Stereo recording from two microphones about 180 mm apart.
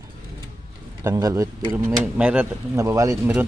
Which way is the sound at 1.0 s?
20° right (ahead or behind).